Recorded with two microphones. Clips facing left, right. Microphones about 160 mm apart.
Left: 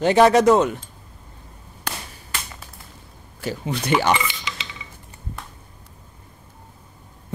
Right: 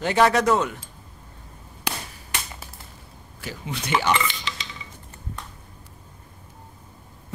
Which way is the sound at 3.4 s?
40° left (ahead or behind).